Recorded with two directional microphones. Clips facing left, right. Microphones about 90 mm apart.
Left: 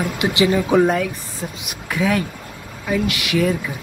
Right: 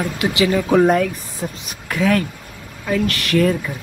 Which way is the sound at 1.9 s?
10° left (ahead or behind).